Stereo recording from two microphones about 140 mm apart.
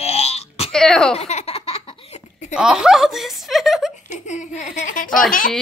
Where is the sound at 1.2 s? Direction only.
50° left (ahead or behind).